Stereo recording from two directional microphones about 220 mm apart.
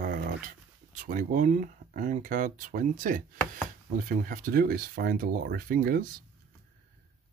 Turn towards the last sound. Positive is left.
turn(degrees=-40)  # may be behind; listen again after turning